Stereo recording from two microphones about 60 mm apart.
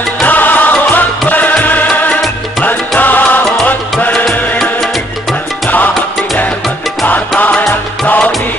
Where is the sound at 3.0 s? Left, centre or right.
Left.